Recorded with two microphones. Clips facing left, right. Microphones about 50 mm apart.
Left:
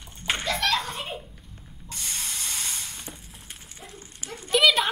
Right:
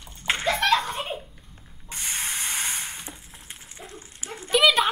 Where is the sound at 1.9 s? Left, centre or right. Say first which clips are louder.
Right 4 dB; right.